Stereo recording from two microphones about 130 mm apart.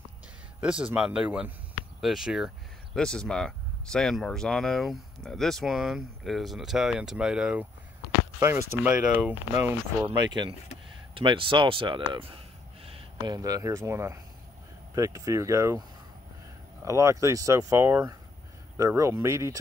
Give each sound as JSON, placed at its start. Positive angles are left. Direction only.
{"t": 0.6, "sound": "speech", "side_deg": -10}
{"t": 8.4, "sound": "speech", "side_deg": -20}
{"t": 10.0, "sound": "speech", "side_deg": -35}
{"t": 13.2, "sound": "speech", "side_deg": -25}
{"t": 16.8, "sound": "speech", "side_deg": -25}